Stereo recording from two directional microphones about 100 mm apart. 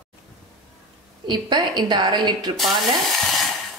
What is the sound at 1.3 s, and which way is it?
A woman's voice, 45° right (ahead or behind).